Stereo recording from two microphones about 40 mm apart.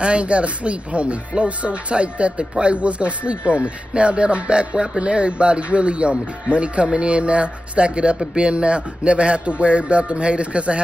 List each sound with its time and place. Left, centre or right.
0.0 s speech: right